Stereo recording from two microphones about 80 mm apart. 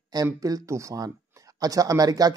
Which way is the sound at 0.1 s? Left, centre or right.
Right.